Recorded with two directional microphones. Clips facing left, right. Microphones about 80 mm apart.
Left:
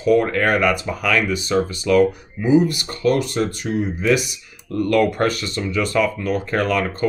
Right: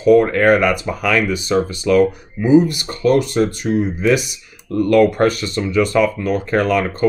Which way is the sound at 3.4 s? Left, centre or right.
Right.